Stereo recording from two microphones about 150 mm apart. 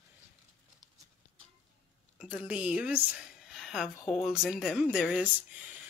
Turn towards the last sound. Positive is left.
turn(degrees=-10)  # may be behind; listen again after turning